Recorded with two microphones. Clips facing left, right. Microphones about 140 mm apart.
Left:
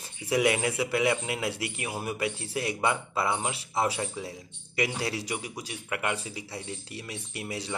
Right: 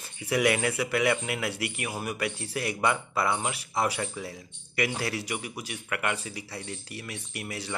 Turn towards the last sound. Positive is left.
turn(degrees=30)  # may be behind; listen again after turning